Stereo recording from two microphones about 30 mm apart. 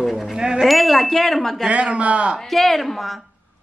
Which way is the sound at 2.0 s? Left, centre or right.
Right.